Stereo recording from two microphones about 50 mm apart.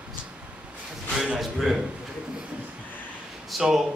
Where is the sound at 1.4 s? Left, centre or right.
Centre.